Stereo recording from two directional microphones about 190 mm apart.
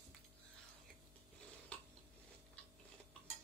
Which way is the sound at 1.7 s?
5° left (ahead or behind).